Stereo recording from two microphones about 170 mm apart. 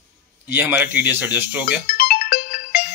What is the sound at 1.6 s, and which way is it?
Ringtone, 60° left (ahead or behind).